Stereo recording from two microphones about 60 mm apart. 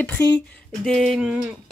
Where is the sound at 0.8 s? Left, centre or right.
Centre.